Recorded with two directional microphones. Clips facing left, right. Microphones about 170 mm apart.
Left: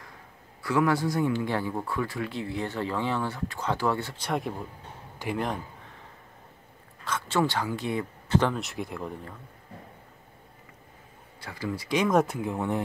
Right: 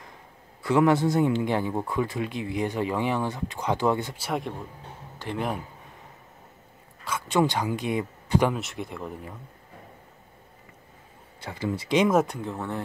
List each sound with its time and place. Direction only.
0.6 s speech: 20° right (ahead or behind)
4.2 s speech: centre (ahead or behind)
5.2 s speech: 10° left (ahead or behind)
7.1 s speech: 15° right (ahead or behind)
8.5 s speech: centre (ahead or behind)
11.4 s speech: 20° right (ahead or behind)
12.1 s speech: centre (ahead or behind)
12.4 s speech: 15° left (ahead or behind)